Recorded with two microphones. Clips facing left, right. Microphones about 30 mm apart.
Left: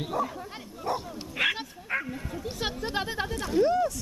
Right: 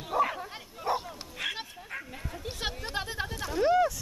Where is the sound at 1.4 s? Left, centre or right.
Left.